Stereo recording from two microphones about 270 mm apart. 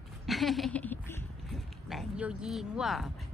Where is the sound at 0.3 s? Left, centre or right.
Centre.